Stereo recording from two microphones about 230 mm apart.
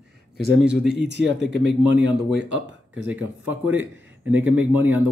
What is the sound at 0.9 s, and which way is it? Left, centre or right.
Speech, right.